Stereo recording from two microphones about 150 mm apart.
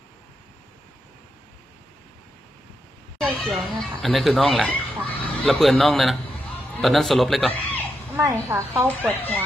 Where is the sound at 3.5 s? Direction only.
Centre (ahead or behind).